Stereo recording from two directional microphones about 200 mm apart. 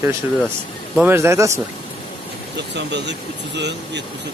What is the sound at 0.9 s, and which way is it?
Speech, 10° right (ahead or behind).